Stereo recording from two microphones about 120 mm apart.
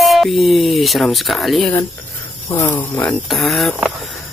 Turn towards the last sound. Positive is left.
turn(degrees=0)  # may be behind; listen again after turning